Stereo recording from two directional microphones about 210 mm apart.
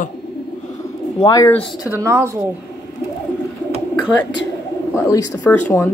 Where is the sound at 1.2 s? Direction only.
15° left (ahead or behind).